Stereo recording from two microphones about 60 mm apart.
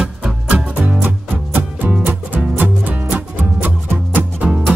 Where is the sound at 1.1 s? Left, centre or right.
Right.